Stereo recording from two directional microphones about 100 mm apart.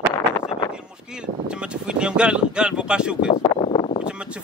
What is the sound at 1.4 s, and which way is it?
Speech, 10° right (ahead or behind).